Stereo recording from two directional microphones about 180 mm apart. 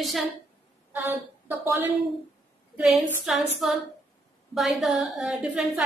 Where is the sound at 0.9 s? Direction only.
10° right (ahead or behind).